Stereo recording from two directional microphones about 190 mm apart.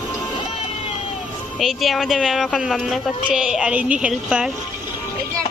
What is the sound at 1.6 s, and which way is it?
A woman's voice, centre (ahead or behind).